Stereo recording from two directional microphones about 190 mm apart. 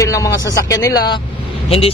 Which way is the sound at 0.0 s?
15° left (ahead or behind).